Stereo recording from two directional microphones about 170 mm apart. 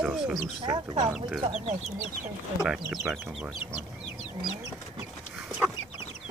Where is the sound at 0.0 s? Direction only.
5° right (ahead or behind).